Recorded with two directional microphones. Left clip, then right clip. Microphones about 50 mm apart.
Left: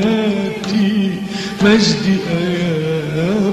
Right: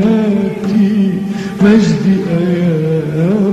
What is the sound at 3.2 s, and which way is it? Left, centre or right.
Carnatic music, left.